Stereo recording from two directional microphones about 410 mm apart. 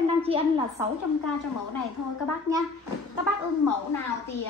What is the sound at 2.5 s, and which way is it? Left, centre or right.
Speech, centre.